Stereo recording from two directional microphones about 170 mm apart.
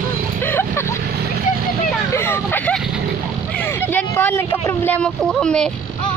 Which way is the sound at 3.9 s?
10° left (ahead or behind).